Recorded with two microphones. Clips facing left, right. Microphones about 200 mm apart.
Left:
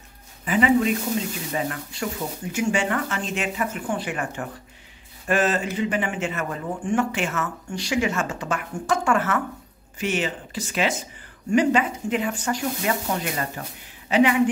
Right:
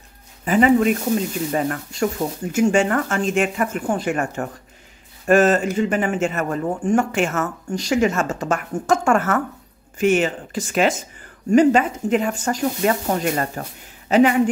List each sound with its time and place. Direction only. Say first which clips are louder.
0.5 s speech: right 4 dB; 45° right (ahead or behind)